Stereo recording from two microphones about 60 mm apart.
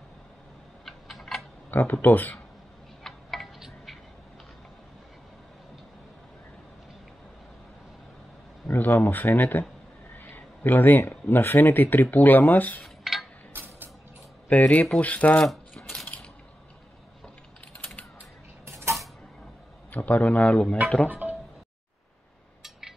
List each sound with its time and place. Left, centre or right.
0.8 s typing: centre
1.7 s speech: left
3.0 s tick-tock: centre
8.7 s speech: left
12.8 s dishes: centre
13.5 s music: right
14.5 s speech: left
15.4 s a sound: centre
18.7 s creak: right
19.9 s a man's voice: left
21.1 s music: right
22.6 s a sound: centre